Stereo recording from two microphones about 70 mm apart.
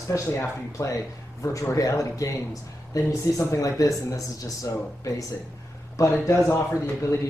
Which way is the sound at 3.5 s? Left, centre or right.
Left.